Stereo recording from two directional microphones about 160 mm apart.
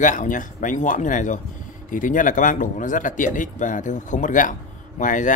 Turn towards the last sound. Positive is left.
turn(degrees=55)  # may be behind; listen again after turning